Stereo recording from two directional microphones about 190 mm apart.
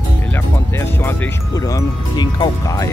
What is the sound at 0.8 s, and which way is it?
Music, 10° left (ahead or behind).